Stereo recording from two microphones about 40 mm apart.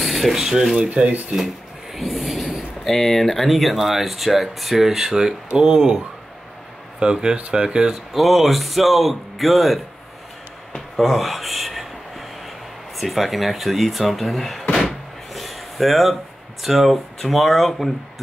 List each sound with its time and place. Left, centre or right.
0.0 s speech: centre
0.9 s speech: right
2.0 s speech: centre
7.0 s speech: right
7.9 s speech: centre
11.0 s a sound: centre
12.9 s speech: centre
15.3 s a sound: centre
16.6 s speech: centre